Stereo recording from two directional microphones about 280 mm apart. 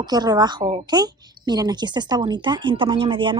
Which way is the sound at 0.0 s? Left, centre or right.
Centre.